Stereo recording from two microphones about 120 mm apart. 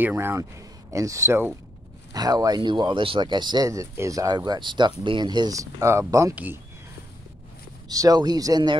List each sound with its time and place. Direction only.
0.0 s speech: 20° right (ahead or behind)
6.3 s speech: 15° right (ahead or behind)
7.9 s speech: 30° right (ahead or behind)